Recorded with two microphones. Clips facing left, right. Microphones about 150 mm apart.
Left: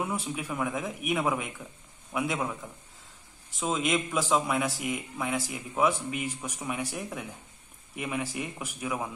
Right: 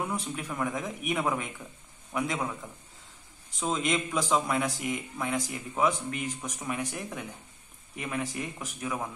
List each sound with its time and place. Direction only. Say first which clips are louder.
0.0 s a man's voice: left 1 dB; 5° left (ahead or behind)